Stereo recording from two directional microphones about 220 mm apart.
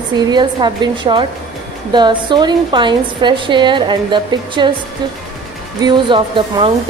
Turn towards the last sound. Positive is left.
turn(degrees=-20)  # may be behind; listen again after turning